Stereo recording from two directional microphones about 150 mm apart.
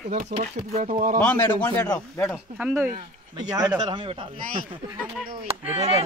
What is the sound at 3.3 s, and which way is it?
Speech, 25° right (ahead or behind).